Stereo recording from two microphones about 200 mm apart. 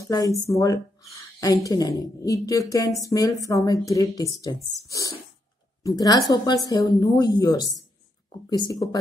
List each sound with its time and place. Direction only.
0.0 s a woman's voice: 15° left (ahead or behind)